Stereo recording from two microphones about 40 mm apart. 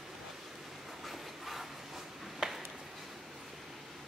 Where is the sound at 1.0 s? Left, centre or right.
Centre.